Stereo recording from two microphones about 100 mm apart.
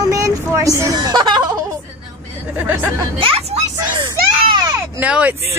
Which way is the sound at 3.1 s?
70° right (ahead or behind).